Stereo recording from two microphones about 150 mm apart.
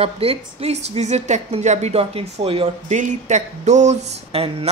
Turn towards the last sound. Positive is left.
turn(degrees=-45)  # may be behind; listen again after turning